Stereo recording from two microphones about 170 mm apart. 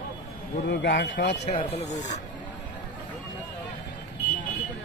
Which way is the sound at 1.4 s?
40° left (ahead or behind).